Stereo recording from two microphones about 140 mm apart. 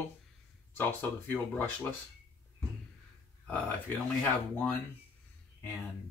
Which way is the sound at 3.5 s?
10° left (ahead or behind).